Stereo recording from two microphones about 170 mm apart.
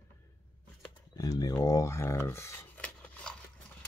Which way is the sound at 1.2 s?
20° left (ahead or behind).